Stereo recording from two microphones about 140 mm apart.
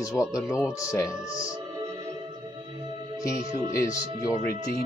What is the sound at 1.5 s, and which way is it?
Music, 30° right (ahead or behind).